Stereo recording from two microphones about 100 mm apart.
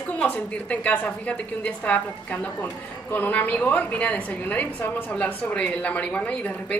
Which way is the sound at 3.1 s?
15° left (ahead or behind).